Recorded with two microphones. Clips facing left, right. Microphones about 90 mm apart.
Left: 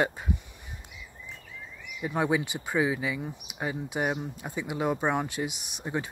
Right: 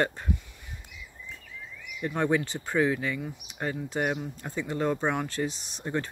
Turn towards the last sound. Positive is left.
turn(degrees=10)  # may be behind; listen again after turning